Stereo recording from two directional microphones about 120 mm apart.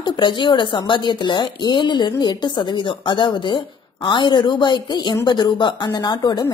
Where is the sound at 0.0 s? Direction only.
40° left (ahead or behind).